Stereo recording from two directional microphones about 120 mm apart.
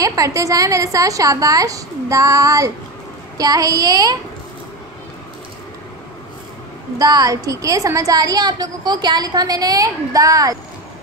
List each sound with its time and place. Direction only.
0.0 s a woman's voice: 30° right (ahead or behind)
7.0 s a woman's voice: 30° right (ahead or behind)